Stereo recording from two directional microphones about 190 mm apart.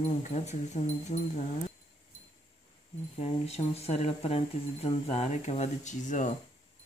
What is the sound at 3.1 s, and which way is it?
Speech, 35° left (ahead or behind).